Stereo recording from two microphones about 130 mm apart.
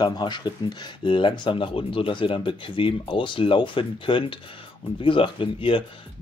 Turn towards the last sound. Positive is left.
turn(degrees=40)  # may be behind; listen again after turning